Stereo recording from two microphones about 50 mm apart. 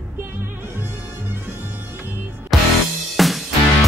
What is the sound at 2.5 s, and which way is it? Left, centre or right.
Music, centre.